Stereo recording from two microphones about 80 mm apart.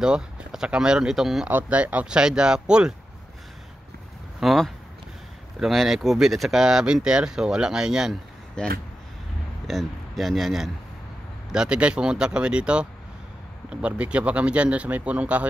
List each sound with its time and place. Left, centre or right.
0.0 s speech: centre
1.5 s speech: centre
4.4 s speech: centre
8.6 s speech: centre
9.7 s speech: centre